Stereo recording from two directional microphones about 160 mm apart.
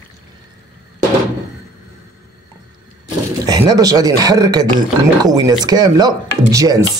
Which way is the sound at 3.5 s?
25° right (ahead or behind).